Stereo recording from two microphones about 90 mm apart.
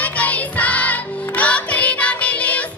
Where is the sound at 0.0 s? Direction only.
15° left (ahead or behind).